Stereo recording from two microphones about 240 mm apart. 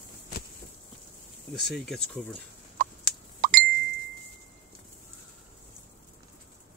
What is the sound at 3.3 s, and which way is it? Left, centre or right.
Ding, right.